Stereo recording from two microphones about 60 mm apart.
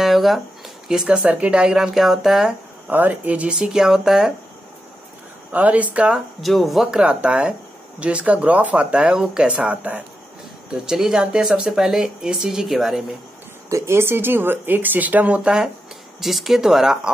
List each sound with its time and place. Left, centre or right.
0.0 s a sound: centre
0.8 s speech: centre
1.3 s speech: centre
2.9 s speech: right; by 4.3 s centre
5.5 s speech: right
6.1 s speech: centre
6.9 s speech: centre
10.7 s speech: centre
13.7 s speech: right
16.2 s speech: centre